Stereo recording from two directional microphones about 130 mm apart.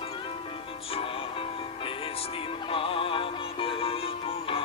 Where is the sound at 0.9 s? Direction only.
45° left (ahead or behind).